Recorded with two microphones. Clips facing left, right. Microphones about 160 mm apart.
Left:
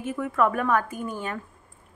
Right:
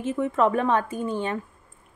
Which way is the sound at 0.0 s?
25° right (ahead or behind).